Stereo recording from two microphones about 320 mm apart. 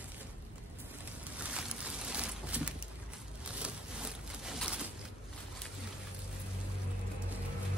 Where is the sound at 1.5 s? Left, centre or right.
Centre.